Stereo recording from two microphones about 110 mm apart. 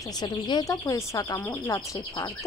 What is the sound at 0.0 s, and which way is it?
Speech, 35° left (ahead or behind).